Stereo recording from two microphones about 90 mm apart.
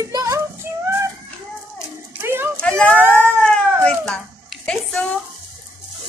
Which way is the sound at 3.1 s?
10° left (ahead or behind).